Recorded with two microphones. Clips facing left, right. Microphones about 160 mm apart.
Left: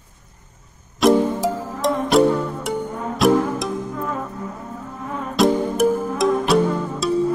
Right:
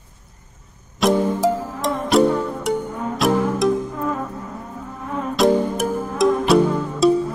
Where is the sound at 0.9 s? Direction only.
Centre (ahead or behind).